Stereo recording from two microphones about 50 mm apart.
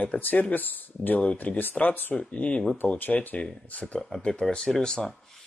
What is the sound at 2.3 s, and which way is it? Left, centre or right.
Speech, left.